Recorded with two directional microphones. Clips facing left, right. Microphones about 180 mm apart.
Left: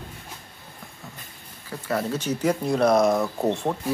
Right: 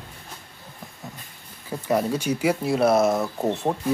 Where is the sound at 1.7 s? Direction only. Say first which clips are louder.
Right 4 dB; 15° right (ahead or behind).